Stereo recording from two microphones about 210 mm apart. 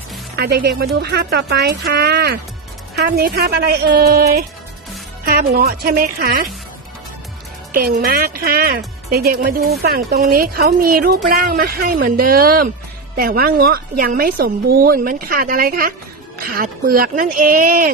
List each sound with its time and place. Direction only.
0.4 s a man's voice: 50° right (ahead or behind)
7.7 s a man's voice: 45° right (ahead or behind)